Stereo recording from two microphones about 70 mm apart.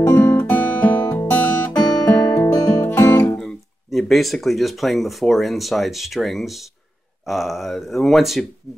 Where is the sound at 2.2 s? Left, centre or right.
Left.